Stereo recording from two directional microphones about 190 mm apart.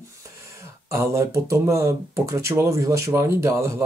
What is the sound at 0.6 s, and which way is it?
Speech, 15° right (ahead or behind).